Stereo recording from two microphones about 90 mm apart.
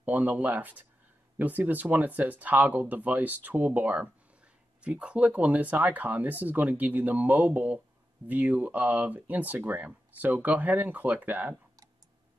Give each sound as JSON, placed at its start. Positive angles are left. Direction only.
{"t": 0.0, "sound": "speech", "side_deg": -20}